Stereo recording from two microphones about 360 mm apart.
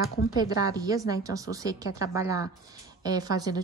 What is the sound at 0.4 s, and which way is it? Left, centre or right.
A woman's voice, centre.